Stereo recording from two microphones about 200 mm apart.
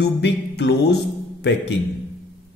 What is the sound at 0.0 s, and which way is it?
Music, 60° left (ahead or behind).